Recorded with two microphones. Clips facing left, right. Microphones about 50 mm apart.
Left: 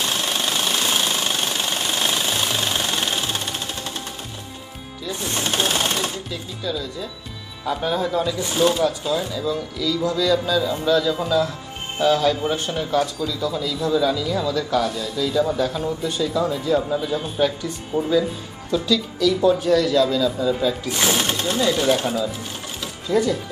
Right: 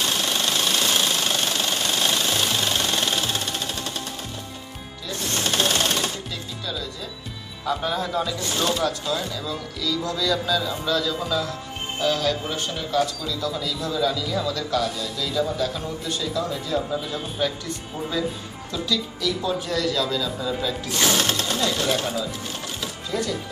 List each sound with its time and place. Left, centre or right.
0.2 s jackhammer: centre
5.0 s music: centre
7.6 s a man's voice: centre
17.9 s speech: left
18.7 s a man's voice: centre